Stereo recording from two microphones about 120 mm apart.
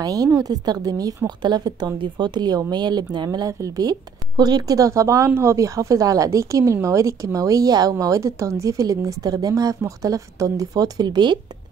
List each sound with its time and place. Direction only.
0.0 s a woman's voice: 30° right (ahead or behind)